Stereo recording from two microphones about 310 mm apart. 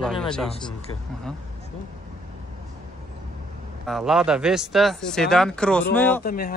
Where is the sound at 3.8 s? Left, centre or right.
Centre.